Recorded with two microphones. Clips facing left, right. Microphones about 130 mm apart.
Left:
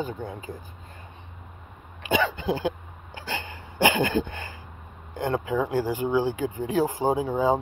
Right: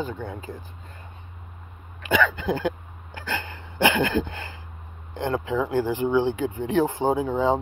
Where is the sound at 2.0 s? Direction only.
40° right (ahead or behind).